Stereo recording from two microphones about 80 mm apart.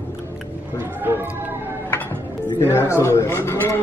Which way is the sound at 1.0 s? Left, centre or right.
Right.